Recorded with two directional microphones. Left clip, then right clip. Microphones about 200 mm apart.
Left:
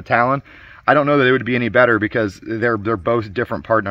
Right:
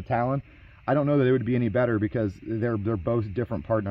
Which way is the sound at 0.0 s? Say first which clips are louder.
Left 11 dB; centre (ahead or behind).